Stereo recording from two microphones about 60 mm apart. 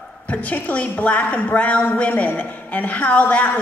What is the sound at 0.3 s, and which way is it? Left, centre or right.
A woman's voice, left.